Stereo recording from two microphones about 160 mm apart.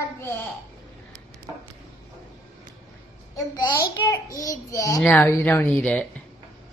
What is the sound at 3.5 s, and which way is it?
A child's voice, 25° left (ahead or behind).